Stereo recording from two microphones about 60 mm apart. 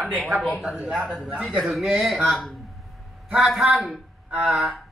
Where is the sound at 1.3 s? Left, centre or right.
Centre.